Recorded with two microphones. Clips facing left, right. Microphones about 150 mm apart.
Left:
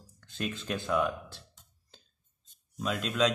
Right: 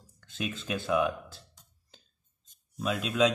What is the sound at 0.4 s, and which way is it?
Mantra, 5° right (ahead or behind).